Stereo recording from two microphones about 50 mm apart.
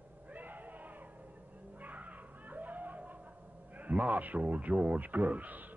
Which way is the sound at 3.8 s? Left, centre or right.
Right.